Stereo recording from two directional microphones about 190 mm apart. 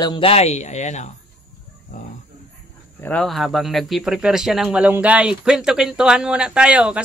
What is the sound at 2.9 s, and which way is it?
Speech, 5° left (ahead or behind).